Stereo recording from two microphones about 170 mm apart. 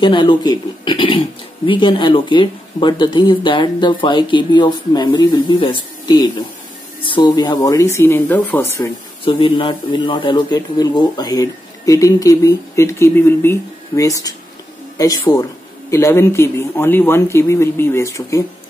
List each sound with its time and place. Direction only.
0.0 s speech: 30° left (ahead or behind)
9.2 s speech: 30° left (ahead or behind)